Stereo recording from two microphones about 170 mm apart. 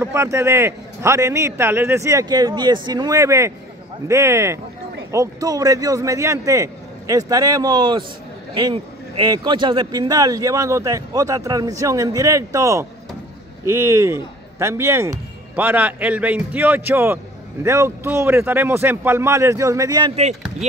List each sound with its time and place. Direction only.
0.0 s a man's voice: 15° right (ahead or behind)